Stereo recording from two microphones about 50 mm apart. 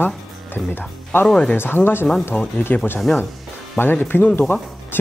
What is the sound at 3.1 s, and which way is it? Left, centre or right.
Speech, left.